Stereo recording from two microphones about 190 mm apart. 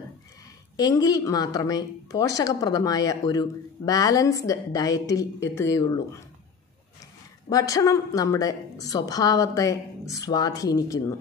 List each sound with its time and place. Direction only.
0.7 s a woman's voice: 20° left (ahead or behind)
7.4 s a woman's voice: 20° left (ahead or behind)